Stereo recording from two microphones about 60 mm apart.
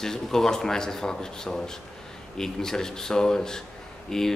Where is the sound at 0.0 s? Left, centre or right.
Centre.